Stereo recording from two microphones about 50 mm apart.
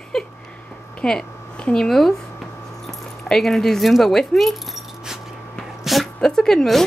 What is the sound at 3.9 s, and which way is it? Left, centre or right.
Speech, centre.